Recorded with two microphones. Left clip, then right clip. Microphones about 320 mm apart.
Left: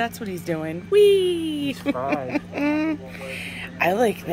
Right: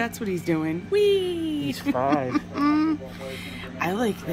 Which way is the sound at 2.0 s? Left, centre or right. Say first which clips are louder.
Right 6 dB; right.